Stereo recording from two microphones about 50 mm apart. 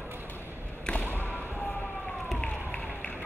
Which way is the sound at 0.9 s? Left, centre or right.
Left.